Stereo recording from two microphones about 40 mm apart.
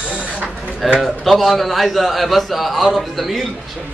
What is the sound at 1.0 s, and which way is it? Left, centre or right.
A man's voice, centre.